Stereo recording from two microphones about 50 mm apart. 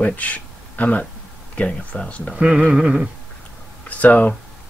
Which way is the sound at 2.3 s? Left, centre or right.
Right.